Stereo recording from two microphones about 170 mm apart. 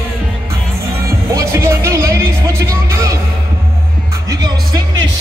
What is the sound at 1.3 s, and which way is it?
Music, 15° right (ahead or behind).